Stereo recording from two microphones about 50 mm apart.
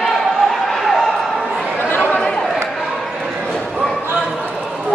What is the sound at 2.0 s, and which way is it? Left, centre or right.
Chatter, left.